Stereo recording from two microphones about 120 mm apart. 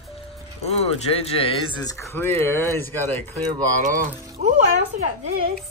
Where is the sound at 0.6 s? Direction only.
65° left (ahead or behind); by 2.0 s 40° left (ahead or behind).